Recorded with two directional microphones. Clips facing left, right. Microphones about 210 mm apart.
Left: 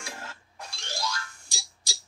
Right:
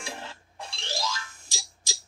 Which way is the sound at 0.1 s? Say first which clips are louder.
Right 2 dB; 25° right (ahead or behind).